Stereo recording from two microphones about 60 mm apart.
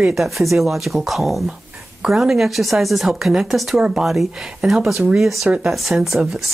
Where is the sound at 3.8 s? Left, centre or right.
Centre.